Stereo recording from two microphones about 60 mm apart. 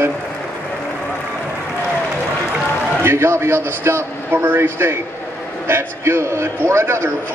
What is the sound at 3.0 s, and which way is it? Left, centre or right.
A man's voice, right.